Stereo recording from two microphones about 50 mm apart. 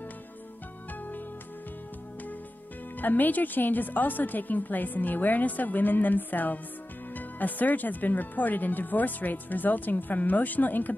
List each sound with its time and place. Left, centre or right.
3.0 s speech: left